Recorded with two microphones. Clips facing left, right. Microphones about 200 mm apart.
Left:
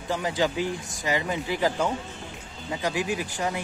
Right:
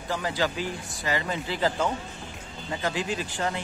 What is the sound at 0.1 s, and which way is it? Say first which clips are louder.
Speech: left 2 dB; 15° left (ahead or behind).